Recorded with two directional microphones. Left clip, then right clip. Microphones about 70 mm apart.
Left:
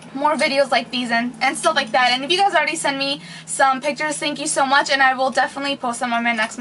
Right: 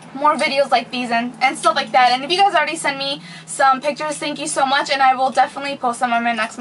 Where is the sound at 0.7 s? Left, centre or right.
Centre.